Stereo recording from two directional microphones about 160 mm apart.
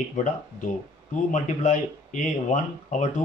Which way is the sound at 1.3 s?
50° left (ahead or behind).